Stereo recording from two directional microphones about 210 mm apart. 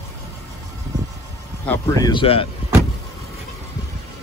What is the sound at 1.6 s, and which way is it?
Speech, 15° left (ahead or behind).